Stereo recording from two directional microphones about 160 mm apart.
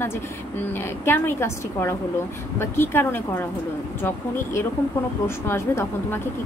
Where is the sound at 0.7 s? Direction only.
15° left (ahead or behind).